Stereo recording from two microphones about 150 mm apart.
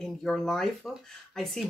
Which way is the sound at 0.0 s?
5° left (ahead or behind).